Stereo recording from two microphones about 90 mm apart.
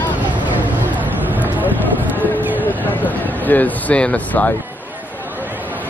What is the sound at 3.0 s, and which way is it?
Speech, 20° left (ahead or behind).